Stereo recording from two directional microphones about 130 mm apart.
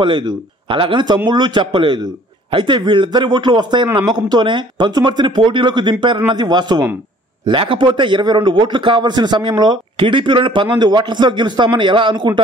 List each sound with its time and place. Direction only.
0.0 s a man's voice: 40° right (ahead or behind)